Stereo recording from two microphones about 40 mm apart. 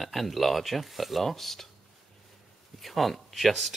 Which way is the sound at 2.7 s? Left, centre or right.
Centre.